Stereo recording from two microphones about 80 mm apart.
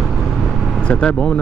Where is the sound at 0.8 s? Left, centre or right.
Centre.